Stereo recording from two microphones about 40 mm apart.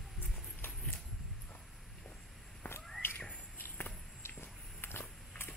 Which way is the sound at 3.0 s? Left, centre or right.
Left.